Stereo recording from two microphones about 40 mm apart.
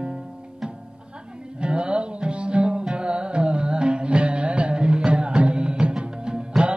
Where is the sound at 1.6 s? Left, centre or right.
Right.